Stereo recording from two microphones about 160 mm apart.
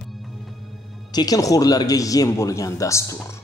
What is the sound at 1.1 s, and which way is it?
A man's voice, 20° left (ahead or behind).